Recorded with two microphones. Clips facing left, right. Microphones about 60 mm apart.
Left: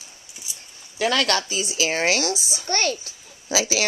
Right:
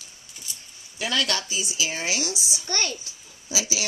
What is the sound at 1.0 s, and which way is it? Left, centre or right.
Speech, left.